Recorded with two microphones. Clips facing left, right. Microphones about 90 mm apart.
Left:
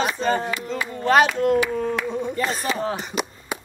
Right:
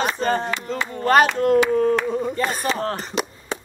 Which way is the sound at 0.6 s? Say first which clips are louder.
Right 1 dB; 40° right (ahead or behind).